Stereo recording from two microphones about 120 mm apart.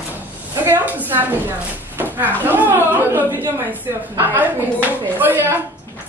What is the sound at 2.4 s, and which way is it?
Speech, 15° right (ahead or behind).